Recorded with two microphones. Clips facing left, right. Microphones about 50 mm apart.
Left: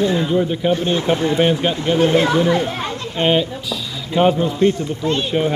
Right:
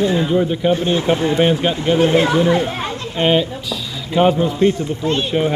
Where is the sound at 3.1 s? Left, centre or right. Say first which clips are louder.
Right 1 dB; centre.